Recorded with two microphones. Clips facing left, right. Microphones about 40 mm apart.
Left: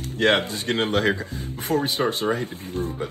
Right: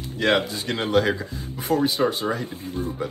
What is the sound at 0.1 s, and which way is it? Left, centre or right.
A man's voice, left.